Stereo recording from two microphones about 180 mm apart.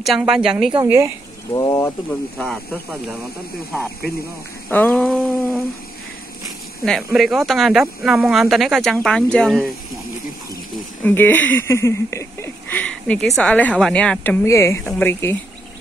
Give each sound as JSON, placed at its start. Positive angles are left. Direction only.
{"t": 0.0, "sound": "speech", "side_deg": 0}
{"t": 0.8, "sound": "speech", "side_deg": -15}
{"t": 1.5, "sound": "speech", "side_deg": 20}
{"t": 2.3, "sound": "speech", "side_deg": 0}
{"t": 4.6, "sound": "a sound", "side_deg": 5}
{"t": 6.8, "sound": "speech", "side_deg": 0}
{"t": 11.1, "sound": "speech", "side_deg": 10}